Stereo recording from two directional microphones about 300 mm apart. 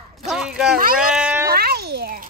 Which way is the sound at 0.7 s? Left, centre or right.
Right.